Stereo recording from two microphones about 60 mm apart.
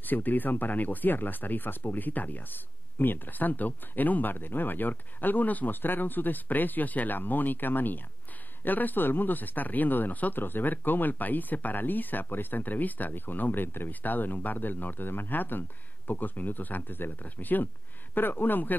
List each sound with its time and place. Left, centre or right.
0.0 s speech: left